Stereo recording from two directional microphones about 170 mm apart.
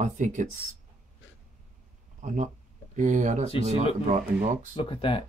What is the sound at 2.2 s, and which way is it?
Speech, 45° right (ahead or behind).